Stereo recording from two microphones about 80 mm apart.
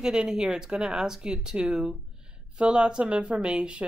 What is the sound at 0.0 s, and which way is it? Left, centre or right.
A woman's voice, centre.